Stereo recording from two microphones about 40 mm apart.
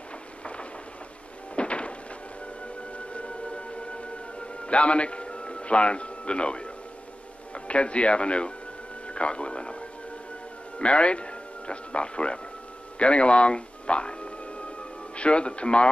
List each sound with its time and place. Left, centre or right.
0.4 s rain: left
1.5 s a sound: left
3.1 s music: left
7.5 s a man's voice: left
13.0 s music: left
15.1 s speech: left